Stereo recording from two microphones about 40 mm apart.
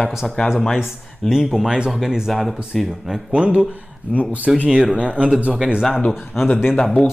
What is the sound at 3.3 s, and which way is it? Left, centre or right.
Speech, right.